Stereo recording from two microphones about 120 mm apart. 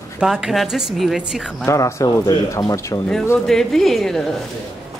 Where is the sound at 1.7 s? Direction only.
25° left (ahead or behind).